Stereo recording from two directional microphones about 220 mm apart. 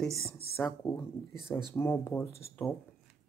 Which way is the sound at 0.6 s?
15° left (ahead or behind).